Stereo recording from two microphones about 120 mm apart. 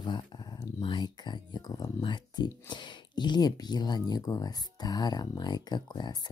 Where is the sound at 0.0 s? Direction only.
40° left (ahead or behind).